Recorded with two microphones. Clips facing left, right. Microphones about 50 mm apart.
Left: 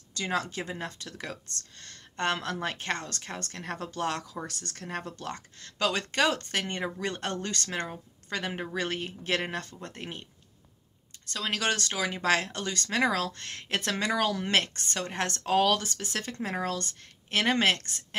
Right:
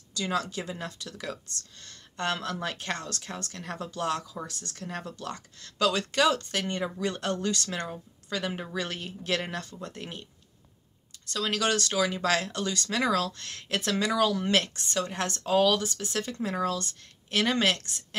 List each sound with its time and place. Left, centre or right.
0.1 s speech: left
11.2 s speech: left
15.3 s speech: left